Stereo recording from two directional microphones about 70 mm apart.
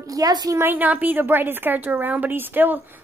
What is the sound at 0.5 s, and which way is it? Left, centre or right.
A woman's voice, right.